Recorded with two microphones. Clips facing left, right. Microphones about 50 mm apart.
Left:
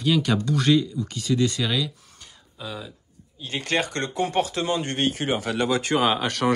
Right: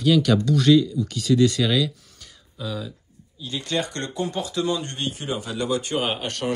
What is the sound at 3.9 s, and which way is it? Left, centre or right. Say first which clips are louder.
Speech: left 2 dB; left.